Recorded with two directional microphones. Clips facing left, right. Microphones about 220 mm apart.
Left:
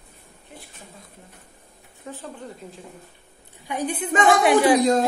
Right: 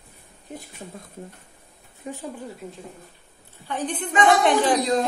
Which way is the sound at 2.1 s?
15° right (ahead or behind).